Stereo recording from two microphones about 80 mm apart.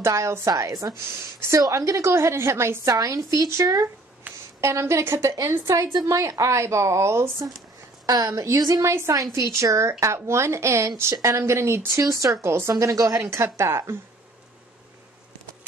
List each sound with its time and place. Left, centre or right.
0.0 s a woman's voice: right
8.1 s a woman's voice: right
8.5 s speech: right
11.9 s speech: right
12.7 s speech: right